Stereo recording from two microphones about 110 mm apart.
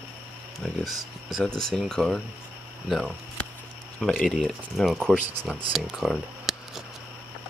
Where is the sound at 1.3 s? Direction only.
5° left (ahead or behind).